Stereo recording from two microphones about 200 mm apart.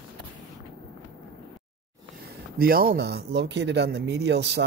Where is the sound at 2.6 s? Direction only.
45° right (ahead or behind).